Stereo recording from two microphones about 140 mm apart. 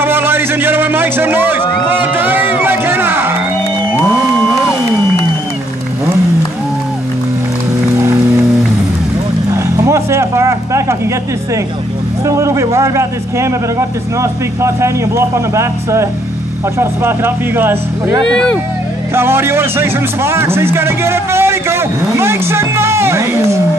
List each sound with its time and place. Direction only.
0.0 s a sound: 15° right (ahead or behind)
1.6 s a sound: 35° left (ahead or behind)
1.9 s music: 15° right (ahead or behind)
9.5 s roaring cats: 20° right (ahead or behind)
12.3 s a man's voice: 20° right (ahead or behind)
18.2 s speech: 5° left (ahead or behind)
19.1 s speech: 15° right (ahead or behind)